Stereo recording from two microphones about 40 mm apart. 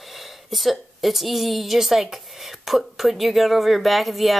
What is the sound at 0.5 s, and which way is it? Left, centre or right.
A woman's voice, centre.